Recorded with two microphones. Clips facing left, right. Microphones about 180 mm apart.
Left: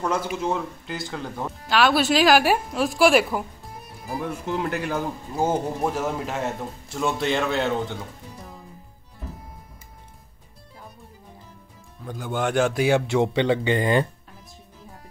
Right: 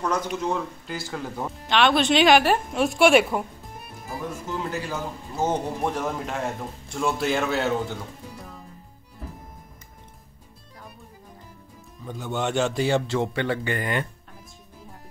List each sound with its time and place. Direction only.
0.0 s a man's voice: 5° left (ahead or behind)
4.3 s speech: 60° left (ahead or behind)
5.3 s a man's voice: 10° left (ahead or behind)
12.0 s a man's voice: 5° left (ahead or behind); by 14.0 s 25° left (ahead or behind)